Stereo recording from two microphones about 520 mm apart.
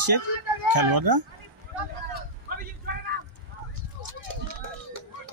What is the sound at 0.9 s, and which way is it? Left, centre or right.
Speech, right.